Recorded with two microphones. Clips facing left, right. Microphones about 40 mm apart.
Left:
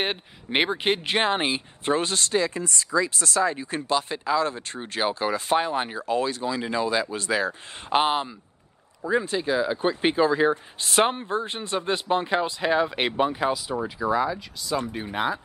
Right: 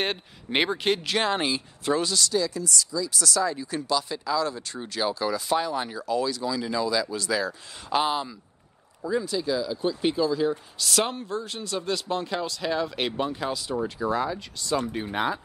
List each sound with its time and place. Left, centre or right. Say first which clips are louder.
0.0 s speech: left 1 dB; centre
14.2 s speech: left 2 dB; centre